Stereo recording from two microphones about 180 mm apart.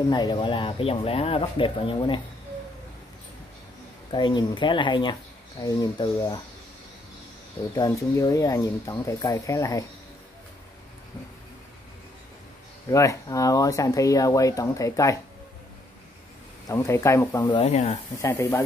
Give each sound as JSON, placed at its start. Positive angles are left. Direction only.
{"t": 0.1, "sound": "speech", "side_deg": 25}
{"t": 4.1, "sound": "speech", "side_deg": 25}
{"t": 7.7, "sound": "speech", "side_deg": 20}
{"t": 12.9, "sound": "speech", "side_deg": 15}
{"t": 16.6, "sound": "speech", "side_deg": 15}
{"t": 17.6, "sound": "speech", "side_deg": 35}
{"t": 18.2, "sound": "speech", "side_deg": 15}